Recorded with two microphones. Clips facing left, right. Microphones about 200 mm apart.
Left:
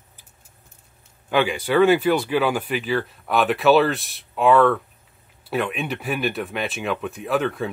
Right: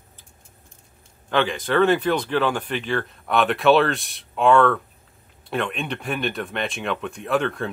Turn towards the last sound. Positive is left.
turn(degrees=0)  # may be behind; listen again after turning